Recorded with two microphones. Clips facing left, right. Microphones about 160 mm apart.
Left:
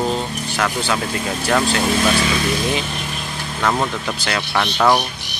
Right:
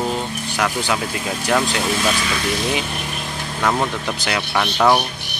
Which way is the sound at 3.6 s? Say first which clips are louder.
Even; 5° right (ahead or behind).